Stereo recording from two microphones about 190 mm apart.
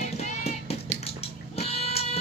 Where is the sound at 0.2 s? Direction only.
35° left (ahead or behind).